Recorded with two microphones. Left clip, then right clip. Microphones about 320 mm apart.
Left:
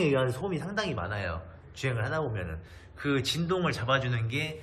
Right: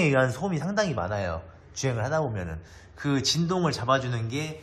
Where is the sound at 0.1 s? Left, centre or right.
Right.